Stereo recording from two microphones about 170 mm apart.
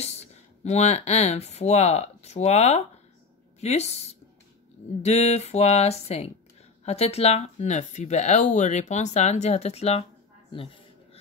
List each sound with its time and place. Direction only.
0.0 s speech: 40° left (ahead or behind)